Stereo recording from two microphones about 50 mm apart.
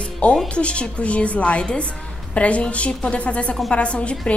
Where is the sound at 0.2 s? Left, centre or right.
Left.